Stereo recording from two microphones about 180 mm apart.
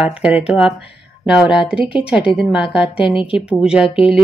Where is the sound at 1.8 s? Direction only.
30° left (ahead or behind).